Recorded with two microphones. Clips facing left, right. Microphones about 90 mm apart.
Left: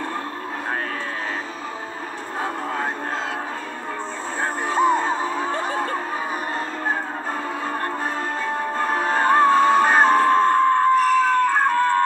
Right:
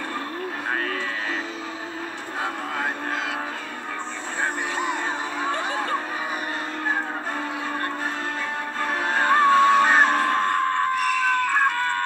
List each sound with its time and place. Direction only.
4.6 s music: 40° left (ahead or behind)
8.7 s music: 35° left (ahead or behind)